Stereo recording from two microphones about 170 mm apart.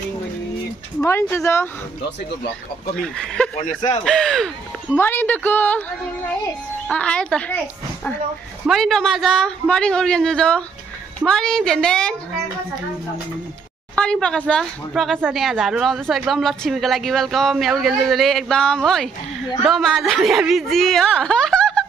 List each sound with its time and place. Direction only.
1.0 s speech: 15° left (ahead or behind)
3.0 s a woman's voice: 5° left (ahead or behind)
3.5 s speech: 40° left (ahead or behind)
4.0 s speech: 5° left (ahead or behind)
6.9 s speech: 5° left (ahead or behind)
8.6 s a woman's voice: centre (ahead or behind)
13.9 s a woman's voice: 5° left (ahead or behind)